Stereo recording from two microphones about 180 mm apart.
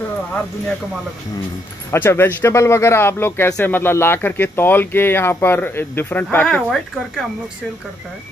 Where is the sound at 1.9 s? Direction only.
15° left (ahead or behind).